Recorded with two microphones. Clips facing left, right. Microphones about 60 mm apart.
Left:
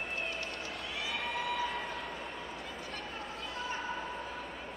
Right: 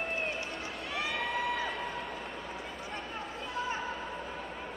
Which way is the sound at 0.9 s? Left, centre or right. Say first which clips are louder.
Right 4 dB; right.